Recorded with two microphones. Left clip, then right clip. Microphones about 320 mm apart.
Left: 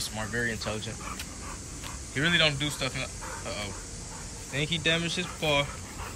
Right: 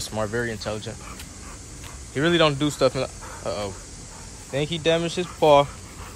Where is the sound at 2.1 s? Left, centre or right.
Centre.